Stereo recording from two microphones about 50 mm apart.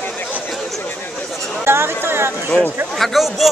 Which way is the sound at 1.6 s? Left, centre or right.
Right.